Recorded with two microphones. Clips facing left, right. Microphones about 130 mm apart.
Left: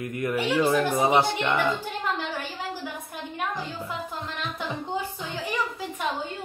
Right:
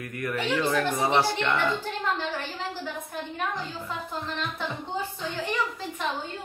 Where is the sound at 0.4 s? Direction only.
10° left (ahead or behind).